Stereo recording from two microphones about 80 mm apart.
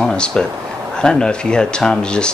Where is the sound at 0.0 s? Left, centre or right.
Centre.